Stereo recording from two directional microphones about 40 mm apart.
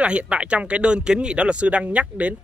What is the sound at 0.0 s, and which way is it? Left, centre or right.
Speech, right.